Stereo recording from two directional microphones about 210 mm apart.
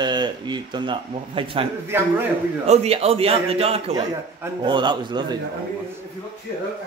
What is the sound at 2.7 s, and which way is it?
Speech, 30° right (ahead or behind).